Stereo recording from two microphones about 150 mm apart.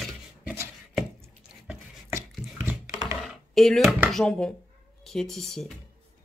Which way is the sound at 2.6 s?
20° right (ahead or behind).